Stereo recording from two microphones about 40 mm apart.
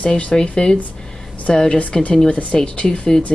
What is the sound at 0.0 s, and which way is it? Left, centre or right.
A woman's voice, left.